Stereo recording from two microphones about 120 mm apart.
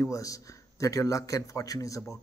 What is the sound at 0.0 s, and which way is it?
A man's voice, 30° left (ahead or behind).